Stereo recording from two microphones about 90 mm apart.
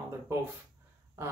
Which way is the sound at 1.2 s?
30° right (ahead or behind).